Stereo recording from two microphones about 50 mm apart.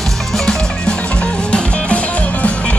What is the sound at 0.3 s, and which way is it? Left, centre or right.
Music, centre.